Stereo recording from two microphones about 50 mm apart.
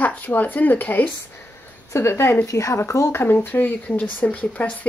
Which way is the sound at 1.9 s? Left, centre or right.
Left.